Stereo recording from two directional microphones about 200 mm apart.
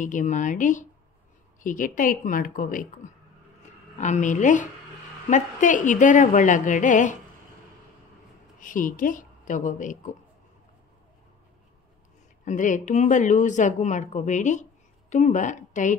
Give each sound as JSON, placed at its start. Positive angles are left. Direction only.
{"t": 0.0, "sound": "a woman's voice", "side_deg": 40}
{"t": 4.0, "sound": "speech", "side_deg": 40}
{"t": 8.5, "sound": "a woman's voice", "side_deg": 40}
{"t": 12.4, "sound": "speech", "side_deg": 40}